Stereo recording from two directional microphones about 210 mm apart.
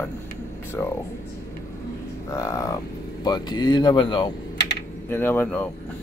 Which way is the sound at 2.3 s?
15° left (ahead or behind).